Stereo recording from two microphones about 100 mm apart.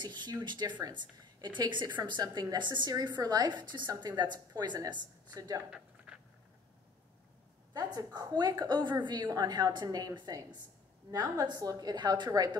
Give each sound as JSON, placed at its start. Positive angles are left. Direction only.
{"t": 0.0, "sound": "a woman's voice", "side_deg": -45}
{"t": 7.7, "sound": "a woman's voice", "side_deg": -45}